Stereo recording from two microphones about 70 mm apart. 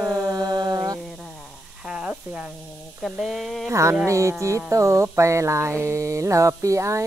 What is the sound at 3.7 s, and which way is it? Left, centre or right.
Speech, right.